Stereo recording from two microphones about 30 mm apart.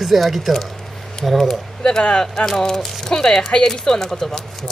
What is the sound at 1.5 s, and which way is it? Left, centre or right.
Speech, centre.